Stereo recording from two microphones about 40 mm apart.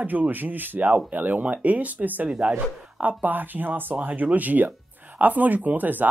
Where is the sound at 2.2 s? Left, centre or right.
Right.